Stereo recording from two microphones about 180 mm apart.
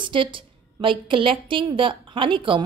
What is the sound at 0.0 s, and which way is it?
A woman's voice, 30° right (ahead or behind).